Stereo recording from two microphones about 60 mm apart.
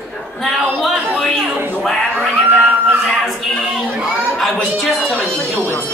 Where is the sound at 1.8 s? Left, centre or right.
Centre.